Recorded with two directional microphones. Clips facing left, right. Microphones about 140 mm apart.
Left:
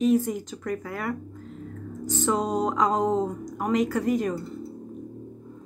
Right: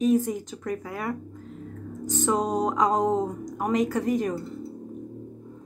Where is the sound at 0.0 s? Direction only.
15° right (ahead or behind).